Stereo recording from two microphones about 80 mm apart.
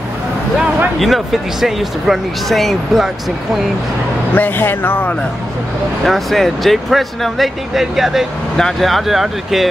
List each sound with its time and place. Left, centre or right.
0.9 s speech: centre
4.4 s speech: left
6.0 s speech: centre